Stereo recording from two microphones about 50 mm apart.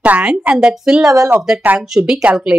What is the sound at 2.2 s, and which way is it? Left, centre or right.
Speech, right.